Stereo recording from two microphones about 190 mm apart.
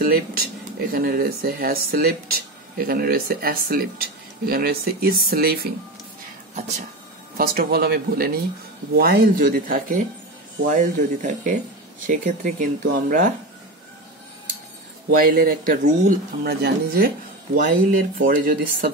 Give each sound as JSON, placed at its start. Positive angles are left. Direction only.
{"t": 0.0, "sound": "speech", "side_deg": -50}
{"t": 7.3, "sound": "speech", "side_deg": -50}
{"t": 15.0, "sound": "speech", "side_deg": -50}